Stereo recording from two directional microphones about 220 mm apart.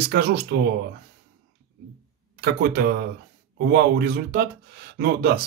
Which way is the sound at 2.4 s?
45° right (ahead or behind).